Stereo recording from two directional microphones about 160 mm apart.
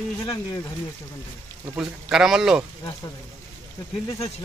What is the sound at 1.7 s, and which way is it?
Speech, 5° right (ahead or behind).